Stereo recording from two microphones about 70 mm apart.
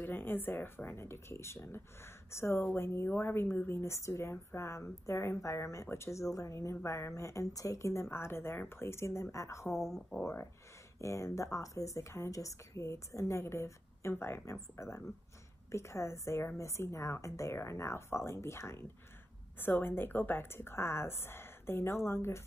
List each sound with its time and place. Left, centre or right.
0.0 s a woman's voice: left